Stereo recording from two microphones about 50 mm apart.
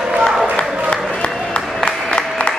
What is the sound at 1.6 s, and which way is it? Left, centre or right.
Music, left.